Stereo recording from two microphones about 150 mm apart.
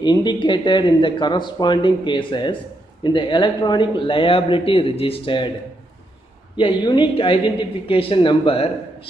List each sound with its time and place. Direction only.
0.0 s speech: 30° left (ahead or behind)
6.5 s speech: 30° left (ahead or behind)